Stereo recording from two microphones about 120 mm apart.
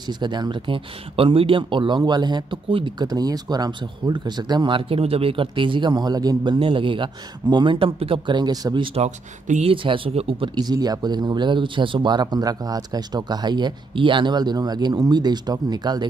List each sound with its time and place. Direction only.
0.0 s speech: 40° right (ahead or behind)
8.8 s speech: 60° right (ahead or behind); by 16.1 s 35° right (ahead or behind)